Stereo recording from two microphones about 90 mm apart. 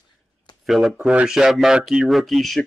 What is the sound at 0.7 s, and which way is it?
Speech, 5° right (ahead or behind).